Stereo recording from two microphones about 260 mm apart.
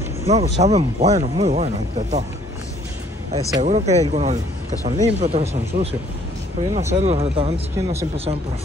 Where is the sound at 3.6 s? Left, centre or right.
Right.